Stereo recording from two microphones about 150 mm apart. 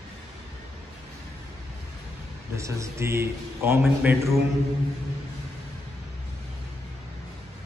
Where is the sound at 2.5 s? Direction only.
20° right (ahead or behind).